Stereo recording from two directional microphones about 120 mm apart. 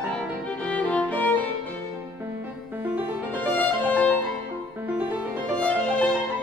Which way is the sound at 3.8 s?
15° left (ahead or behind).